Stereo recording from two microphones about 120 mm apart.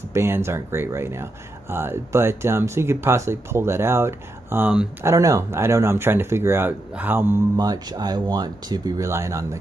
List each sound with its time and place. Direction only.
0.1 s speech: 25° right (ahead or behind)
7.5 s speech: 30° right (ahead or behind)